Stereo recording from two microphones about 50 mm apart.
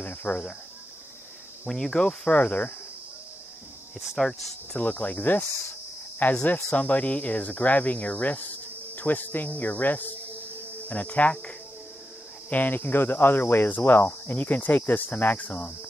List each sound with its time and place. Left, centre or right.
0.0 s cricket: left
1.7 s cricket: centre; by 2.7 s left
4.2 s speech: centre
4.7 s cricket: left
6.4 s cricket: left